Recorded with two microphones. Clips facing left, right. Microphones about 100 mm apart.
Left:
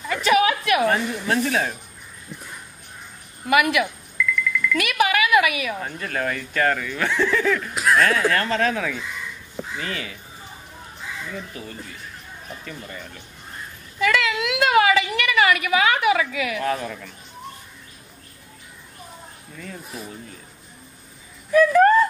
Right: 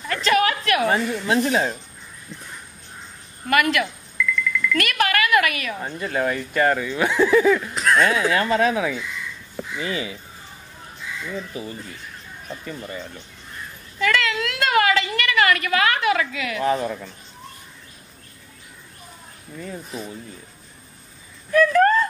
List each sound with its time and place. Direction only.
0.0 s a sound: 10° left (ahead or behind)
1.2 s speech: 10° right (ahead or behind)
2.3 s dog: 15° left (ahead or behind)
3.4 s speech: 10° left (ahead or behind)
4.2 s a sound: centre (ahead or behind)
5.9 s speech: 15° right (ahead or behind)
7.7 s a sound: 5° left (ahead or behind)
8.3 s speech: 10° right (ahead or behind)
11.3 s speech: 10° right (ahead or behind)
13.9 s a woman's voice: 5° left (ahead or behind)
16.5 s speech: 15° right (ahead or behind)
19.5 s speech: 15° right (ahead or behind)
19.9 s speech: centre (ahead or behind)
21.5 s speech: 10° left (ahead or behind)